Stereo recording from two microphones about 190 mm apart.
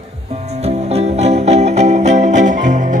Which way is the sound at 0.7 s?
35° right (ahead or behind).